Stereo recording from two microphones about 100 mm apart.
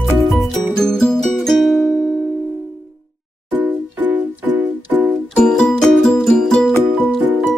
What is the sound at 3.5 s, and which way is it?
Music, 15° right (ahead or behind).